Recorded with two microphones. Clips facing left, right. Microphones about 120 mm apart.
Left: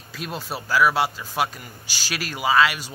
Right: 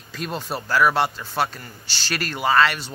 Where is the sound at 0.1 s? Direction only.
5° left (ahead or behind).